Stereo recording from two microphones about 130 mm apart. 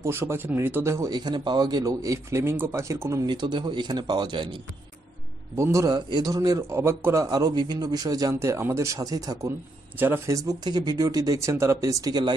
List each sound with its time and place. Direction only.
0.0 s speech: 20° right (ahead or behind)
1.1 s speech: 35° right (ahead or behind)
3.3 s speech: 35° right (ahead or behind)
5.6 s speech: 25° right (ahead or behind)
5.9 s speech: 35° right (ahead or behind); by 7.2 s 20° right (ahead or behind)
7.2 s speech: 30° right (ahead or behind)
9.9 s speech: 15° right (ahead or behind)